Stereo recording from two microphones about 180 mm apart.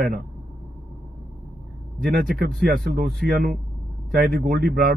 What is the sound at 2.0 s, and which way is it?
A man's voice, 50° right (ahead or behind).